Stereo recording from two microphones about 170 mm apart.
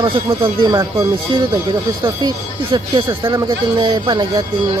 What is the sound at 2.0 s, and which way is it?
Speech, 25° right (ahead or behind).